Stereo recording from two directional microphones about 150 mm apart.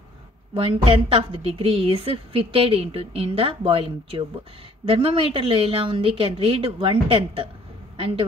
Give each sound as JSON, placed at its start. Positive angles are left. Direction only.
{"t": 0.6, "sound": "a woman's voice", "side_deg": -35}